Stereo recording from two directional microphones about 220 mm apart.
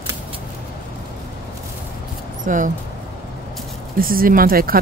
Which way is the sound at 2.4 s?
35° right (ahead or behind).